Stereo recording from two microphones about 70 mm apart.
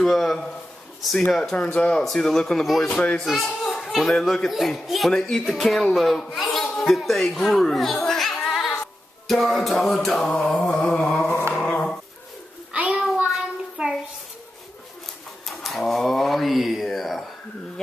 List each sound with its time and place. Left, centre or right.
0.0 s speech: centre
3.0 s speech: centre
8.5 s cat: centre
9.3 s speech: centre
10.3 s speech: centre
11.1 s a sound: centre
11.6 s dog: centre
12.7 s child singing: centre
15.4 s a sound: centre